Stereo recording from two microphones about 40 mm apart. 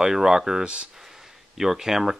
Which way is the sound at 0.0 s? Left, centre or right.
Centre.